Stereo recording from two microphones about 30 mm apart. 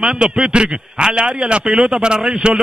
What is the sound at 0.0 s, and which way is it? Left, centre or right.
A man's voice, right.